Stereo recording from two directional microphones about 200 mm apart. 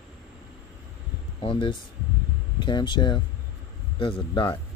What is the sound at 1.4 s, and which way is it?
Speech, 25° left (ahead or behind).